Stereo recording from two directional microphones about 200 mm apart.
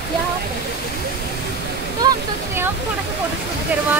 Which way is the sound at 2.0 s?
15° right (ahead or behind).